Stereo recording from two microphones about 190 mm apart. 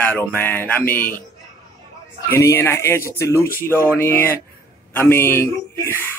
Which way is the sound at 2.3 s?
15° left (ahead or behind).